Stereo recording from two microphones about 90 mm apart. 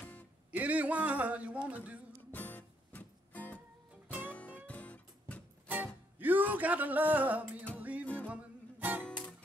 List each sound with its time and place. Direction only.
0.5 s a man's voice: 15° right (ahead or behind)
2.3 s music: 20° left (ahead or behind)
5.7 s music: 15° right (ahead or behind)
9.0 s music: 10° left (ahead or behind)